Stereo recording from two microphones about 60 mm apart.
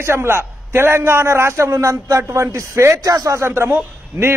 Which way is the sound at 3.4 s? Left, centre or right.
Right.